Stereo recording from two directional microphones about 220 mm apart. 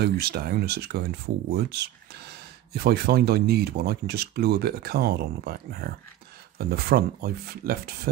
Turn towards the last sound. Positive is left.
turn(degrees=-45)  # may be behind; listen again after turning